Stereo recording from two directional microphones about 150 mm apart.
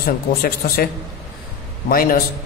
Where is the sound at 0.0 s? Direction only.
80° left.